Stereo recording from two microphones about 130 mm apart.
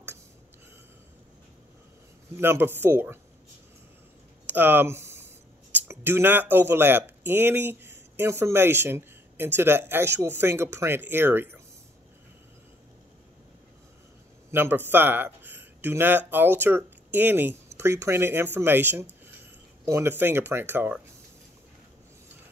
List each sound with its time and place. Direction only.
2.3 s speech: 20° right (ahead or behind)
4.5 s speech: 15° right (ahead or behind)
14.5 s speech: 15° right (ahead or behind)